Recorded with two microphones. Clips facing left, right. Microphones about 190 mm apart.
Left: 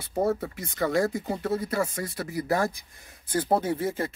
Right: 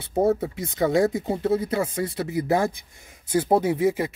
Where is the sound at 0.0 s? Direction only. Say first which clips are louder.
Right 5 dB; 25° right (ahead or behind).